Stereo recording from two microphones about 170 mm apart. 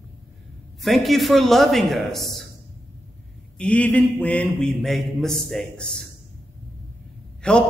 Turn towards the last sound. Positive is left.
turn(degrees=5)  # may be behind; listen again after turning